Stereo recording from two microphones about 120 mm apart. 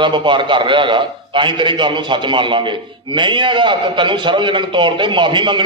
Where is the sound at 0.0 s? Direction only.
40° right (ahead or behind).